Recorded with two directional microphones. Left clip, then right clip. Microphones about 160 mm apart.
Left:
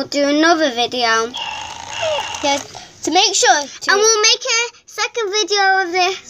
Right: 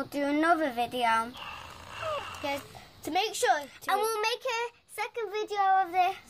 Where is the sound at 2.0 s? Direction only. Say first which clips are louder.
Left 15 dB; 5° left (ahead or behind).